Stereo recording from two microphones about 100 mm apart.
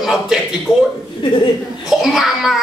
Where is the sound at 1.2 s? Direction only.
60° left (ahead or behind).